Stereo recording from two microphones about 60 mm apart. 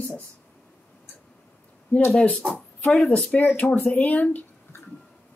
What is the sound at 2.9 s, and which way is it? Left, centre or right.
Speech, centre.